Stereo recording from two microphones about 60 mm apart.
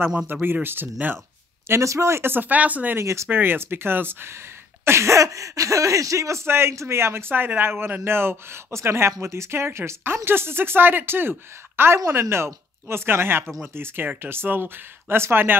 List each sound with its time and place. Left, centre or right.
0.3 s speech: right
1.7 s speech: right
2.3 s speech: right
3.0 s speech: right
3.3 s speech: right
6.4 s speech: right